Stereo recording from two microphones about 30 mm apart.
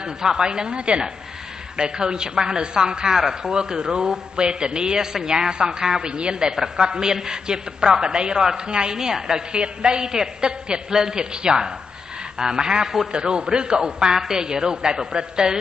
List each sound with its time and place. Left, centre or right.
0.0 s a woman's voice: right
9.5 s a man's voice: right